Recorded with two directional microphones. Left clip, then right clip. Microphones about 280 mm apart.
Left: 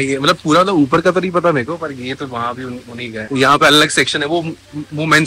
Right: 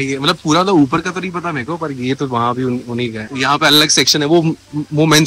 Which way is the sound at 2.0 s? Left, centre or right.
Right.